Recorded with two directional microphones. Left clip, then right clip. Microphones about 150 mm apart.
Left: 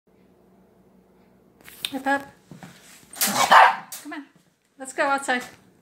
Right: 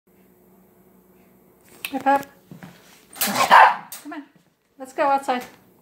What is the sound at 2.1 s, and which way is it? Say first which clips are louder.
Speech: right 5 dB; 20° right (ahead or behind).